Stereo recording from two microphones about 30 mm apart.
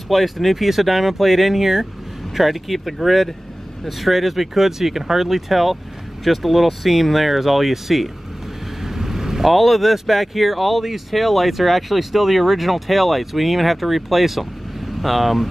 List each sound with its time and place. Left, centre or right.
0.1 s speech: centre
8.8 s vehicle: centre
9.5 s speech: centre